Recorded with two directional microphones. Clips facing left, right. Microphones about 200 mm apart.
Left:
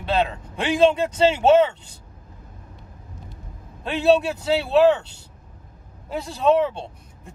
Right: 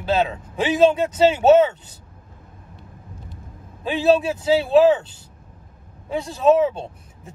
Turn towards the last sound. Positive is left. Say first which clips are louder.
# right 2 dB
turn(degrees=-5)  # may be behind; listen again after turning